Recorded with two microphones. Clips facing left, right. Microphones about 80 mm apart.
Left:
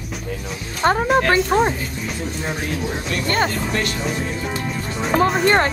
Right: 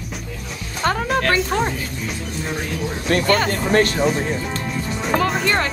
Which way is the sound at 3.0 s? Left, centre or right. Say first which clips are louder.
Right 5 dB; right.